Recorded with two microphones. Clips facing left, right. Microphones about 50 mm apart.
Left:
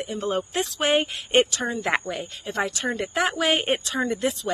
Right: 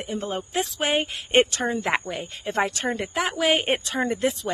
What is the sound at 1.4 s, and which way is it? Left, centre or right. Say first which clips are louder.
Speech: right 1 dB; right.